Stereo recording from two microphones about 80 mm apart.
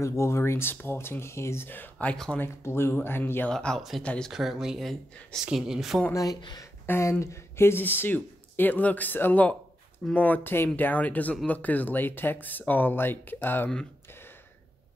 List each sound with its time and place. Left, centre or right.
0.0 s speech: left
3.4 s speech: centre
5.4 s speech: centre
6.1 s speech: left
6.9 s speech: left